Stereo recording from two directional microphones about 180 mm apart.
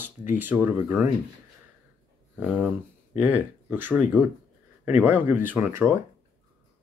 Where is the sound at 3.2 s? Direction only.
10° right (ahead or behind).